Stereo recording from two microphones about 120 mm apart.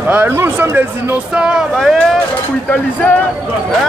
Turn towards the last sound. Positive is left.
turn(degrees=15)  # may be behind; listen again after turning